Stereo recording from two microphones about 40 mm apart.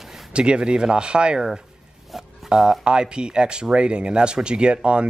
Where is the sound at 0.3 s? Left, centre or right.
Right.